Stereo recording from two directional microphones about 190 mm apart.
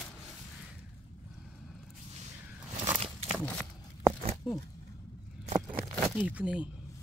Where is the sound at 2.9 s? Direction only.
30° right (ahead or behind).